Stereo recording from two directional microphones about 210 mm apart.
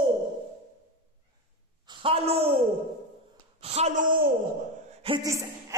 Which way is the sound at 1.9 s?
25° right (ahead or behind).